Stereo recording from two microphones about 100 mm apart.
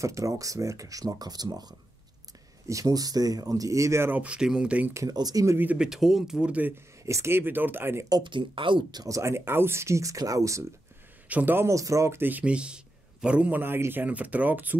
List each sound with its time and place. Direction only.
0.0 s speech: 35° right (ahead or behind)
4.2 s speech: 10° right (ahead or behind)
4.9 s speech: 40° right (ahead or behind)
5.6 s speech: 15° right (ahead or behind)
5.9 s speech: 5° right (ahead or behind)
7.1 s speech: 25° right (ahead or behind)
8.1 s speech: 55° right (ahead or behind)
9.0 s speech: 30° right (ahead or behind)
11.2 s speech: 15° right (ahead or behind)